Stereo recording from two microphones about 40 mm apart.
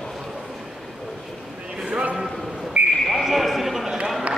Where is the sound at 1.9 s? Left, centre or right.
Right.